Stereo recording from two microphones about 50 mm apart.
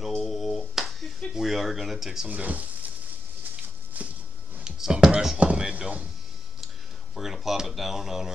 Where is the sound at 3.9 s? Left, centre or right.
Right.